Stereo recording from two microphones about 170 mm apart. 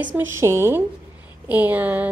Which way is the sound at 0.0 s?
10° right (ahead or behind).